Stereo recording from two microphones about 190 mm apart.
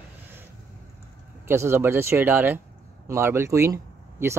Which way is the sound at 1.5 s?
15° right (ahead or behind).